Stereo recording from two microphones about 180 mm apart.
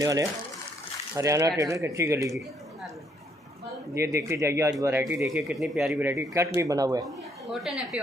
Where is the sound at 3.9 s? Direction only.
15° right (ahead or behind).